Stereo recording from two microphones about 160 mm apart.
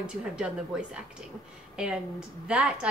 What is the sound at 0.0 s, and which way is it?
A woman's voice, 5° right (ahead or behind).